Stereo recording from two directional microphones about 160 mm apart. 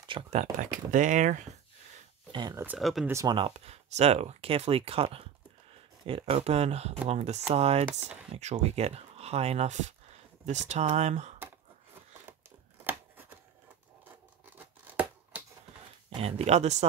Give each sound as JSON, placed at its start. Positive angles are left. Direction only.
{"t": 0.3, "sound": "speech", "side_deg": -50}
{"t": 2.3, "sound": "speech", "side_deg": -25}
{"t": 2.8, "sound": "speech", "side_deg": 0}
{"t": 3.1, "sound": "speech", "side_deg": -20}
{"t": 3.3, "sound": "speech", "side_deg": -35}
{"t": 12.3, "sound": "a sound", "side_deg": -15}
{"t": 14.4, "sound": "scissors", "side_deg": -10}
{"t": 16.2, "sound": "speech", "side_deg": -40}